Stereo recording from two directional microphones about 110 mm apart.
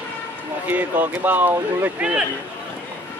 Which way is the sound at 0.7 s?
15° right (ahead or behind).